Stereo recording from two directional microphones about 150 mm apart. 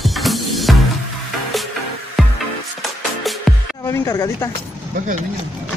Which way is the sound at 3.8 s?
20° left (ahead or behind).